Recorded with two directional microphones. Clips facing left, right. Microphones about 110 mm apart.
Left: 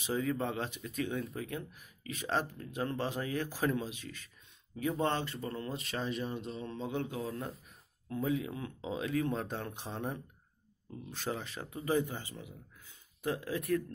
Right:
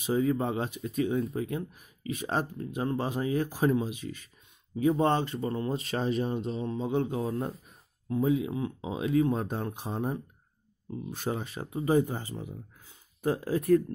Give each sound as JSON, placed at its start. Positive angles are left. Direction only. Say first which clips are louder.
{"t": 0.0, "sound": "speech", "louder": "right 6 dB", "side_deg": -25}
{"t": 5.9, "sound": "speech", "louder": "right 6 dB", "side_deg": -45}
{"t": 6.7, "sound": "speech", "louder": "right 7 dB", "side_deg": -15}
{"t": 7.2, "sound": "speech", "louder": "right 7 dB", "side_deg": -30}